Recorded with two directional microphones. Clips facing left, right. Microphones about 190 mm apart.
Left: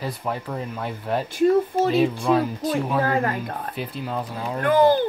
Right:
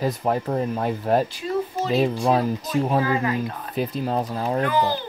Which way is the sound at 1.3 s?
55° left (ahead or behind).